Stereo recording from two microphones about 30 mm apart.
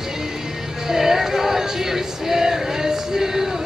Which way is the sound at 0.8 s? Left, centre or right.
Centre.